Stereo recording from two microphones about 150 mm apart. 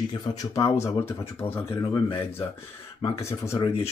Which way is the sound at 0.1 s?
25° left (ahead or behind).